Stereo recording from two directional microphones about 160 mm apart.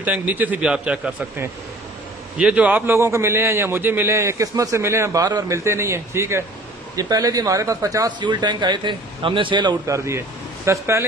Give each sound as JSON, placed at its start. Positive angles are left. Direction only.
{"t": 0.0, "sound": "a man's voice", "side_deg": -10}